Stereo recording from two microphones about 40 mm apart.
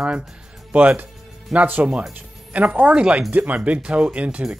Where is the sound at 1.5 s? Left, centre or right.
Right.